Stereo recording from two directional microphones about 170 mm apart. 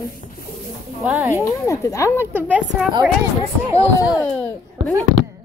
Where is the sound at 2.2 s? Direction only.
10° right (ahead or behind).